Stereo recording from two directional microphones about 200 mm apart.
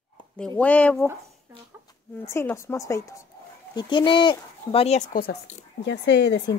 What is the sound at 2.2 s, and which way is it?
Speech, 10° left (ahead or behind).